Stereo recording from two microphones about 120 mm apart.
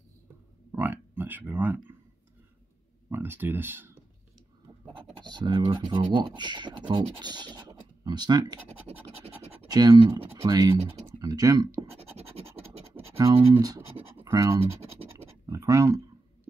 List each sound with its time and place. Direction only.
0.7 s speech: 20° right (ahead or behind)
3.1 s speech: 15° right (ahead or behind)
5.2 s speech: 35° right (ahead or behind)
8.6 s scratch: 60° right (ahead or behind)
9.7 s speech: 30° right (ahead or behind)
13.3 s speech: 50° right (ahead or behind)
14.2 s speech: 30° right (ahead or behind)
15.4 s a sound: 25° right (ahead or behind)